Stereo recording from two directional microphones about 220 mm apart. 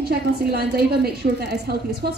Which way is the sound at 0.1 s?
45° right (ahead or behind).